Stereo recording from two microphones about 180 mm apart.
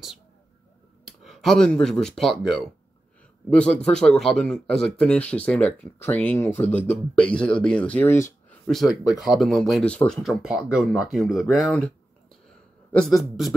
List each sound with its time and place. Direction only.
1.0 s a man's voice: centre (ahead or behind)
8.6 s speech: centre (ahead or behind)
12.9 s speech: centre (ahead or behind)